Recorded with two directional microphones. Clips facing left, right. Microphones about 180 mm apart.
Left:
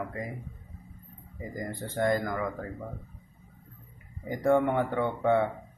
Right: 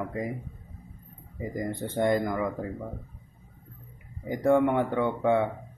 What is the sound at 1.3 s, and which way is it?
A man's voice, 25° right (ahead or behind).